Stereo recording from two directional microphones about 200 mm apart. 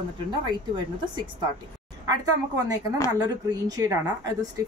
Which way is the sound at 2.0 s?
15° right (ahead or behind).